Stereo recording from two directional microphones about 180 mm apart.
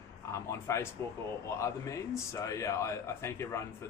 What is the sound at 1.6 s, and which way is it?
Speech, 15° left (ahead or behind).